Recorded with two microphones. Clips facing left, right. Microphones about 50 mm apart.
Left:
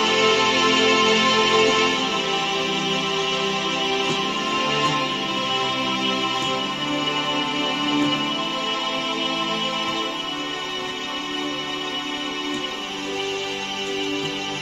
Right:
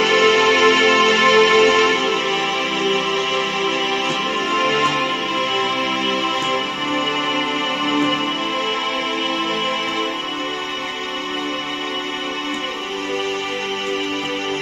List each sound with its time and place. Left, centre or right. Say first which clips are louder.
0.0 s music: right 5 dB; right